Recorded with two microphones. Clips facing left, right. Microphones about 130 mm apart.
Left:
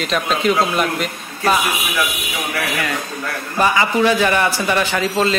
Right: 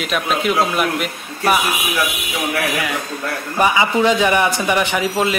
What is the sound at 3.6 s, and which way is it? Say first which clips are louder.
Speech: even; 15° right (ahead or behind).